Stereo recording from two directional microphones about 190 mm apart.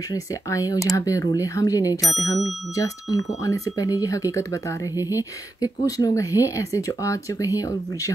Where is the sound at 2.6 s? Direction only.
15° left (ahead or behind).